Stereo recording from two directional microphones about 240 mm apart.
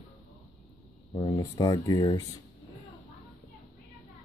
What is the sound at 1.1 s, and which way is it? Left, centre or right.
Speech, centre.